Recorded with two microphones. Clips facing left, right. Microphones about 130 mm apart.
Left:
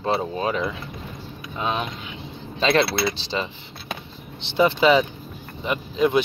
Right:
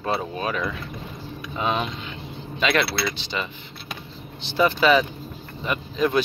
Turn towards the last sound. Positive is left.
turn(degrees=20)  # may be behind; listen again after turning